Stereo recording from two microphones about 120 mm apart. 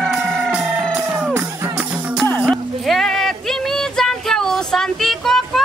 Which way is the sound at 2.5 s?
Centre (ahead or behind).